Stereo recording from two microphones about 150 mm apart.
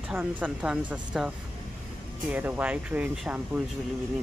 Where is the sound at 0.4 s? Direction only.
10° right (ahead or behind).